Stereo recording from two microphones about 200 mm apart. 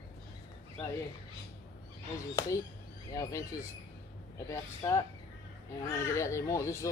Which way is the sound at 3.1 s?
15° left (ahead or behind).